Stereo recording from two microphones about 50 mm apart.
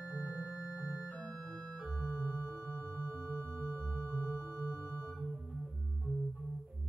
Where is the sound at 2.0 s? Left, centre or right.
Right.